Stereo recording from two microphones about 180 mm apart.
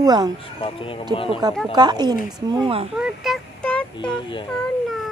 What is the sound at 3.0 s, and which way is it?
Child singing, centre (ahead or behind).